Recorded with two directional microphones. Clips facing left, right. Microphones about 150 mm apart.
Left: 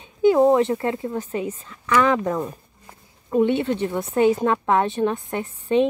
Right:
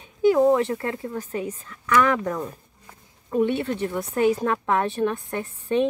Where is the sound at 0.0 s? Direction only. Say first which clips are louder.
Left 2 dB; 25° left (ahead or behind).